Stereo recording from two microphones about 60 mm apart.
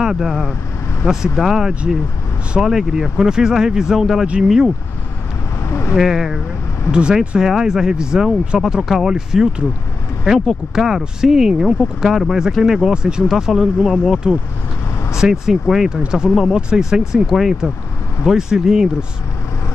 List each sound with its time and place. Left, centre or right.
0.0 s speech: centre
1.7 s speech: centre
5.7 s a sound: left
5.9 s speech: centre
10.7 s speech: centre
15.4 s speech: centre